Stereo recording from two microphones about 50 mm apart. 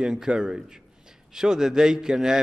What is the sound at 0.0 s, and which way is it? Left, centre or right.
A man's voice, centre.